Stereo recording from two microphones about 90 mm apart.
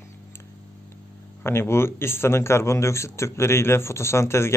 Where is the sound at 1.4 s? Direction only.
30° left (ahead or behind).